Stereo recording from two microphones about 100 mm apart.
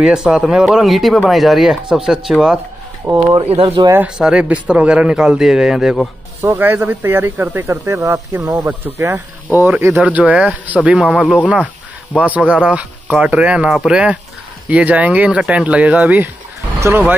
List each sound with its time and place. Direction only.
0.0 s speech: 5° right (ahead or behind)
3.0 s speech: 20° right (ahead or behind)
3.8 s speech: 50° right (ahead or behind)
4.2 s speech: 10° right (ahead or behind)
6.6 s speech: 20° right (ahead or behind)
8.4 s speech: 15° right (ahead or behind)